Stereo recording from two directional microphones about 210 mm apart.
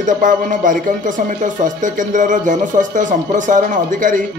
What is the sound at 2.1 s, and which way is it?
Speech, 35° right (ahead or behind).